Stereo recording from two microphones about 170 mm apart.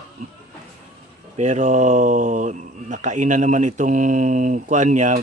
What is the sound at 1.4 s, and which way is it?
Speech, 45° right (ahead or behind).